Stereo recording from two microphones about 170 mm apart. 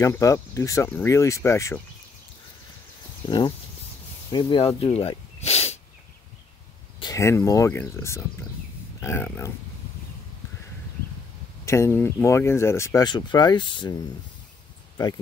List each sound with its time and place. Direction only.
0.0 s speech: 15° left (ahead or behind)
3.3 s speech: 25° left (ahead or behind)
7.0 s speech: 20° left (ahead or behind)
11.6 s speech: 15° left (ahead or behind)